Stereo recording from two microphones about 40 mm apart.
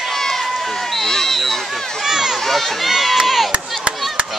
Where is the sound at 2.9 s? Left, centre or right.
Centre.